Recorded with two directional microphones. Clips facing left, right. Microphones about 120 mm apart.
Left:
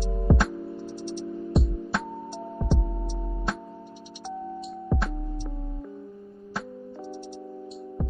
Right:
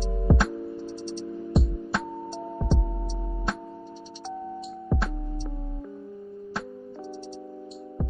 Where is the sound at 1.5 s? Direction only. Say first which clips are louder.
Even; centre (ahead or behind).